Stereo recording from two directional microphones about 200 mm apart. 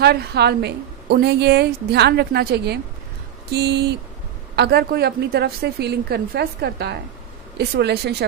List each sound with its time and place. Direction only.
0.0 s a woman's voice: 55° right (ahead or behind)